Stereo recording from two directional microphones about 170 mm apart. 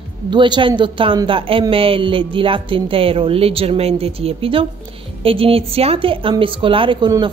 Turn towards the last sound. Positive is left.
turn(degrees=-25)  # may be behind; listen again after turning